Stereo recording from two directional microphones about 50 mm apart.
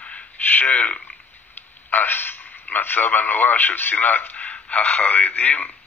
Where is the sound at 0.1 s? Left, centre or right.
Left.